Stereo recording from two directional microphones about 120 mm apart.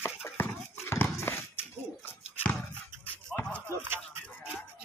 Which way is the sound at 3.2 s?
10° left (ahead or behind).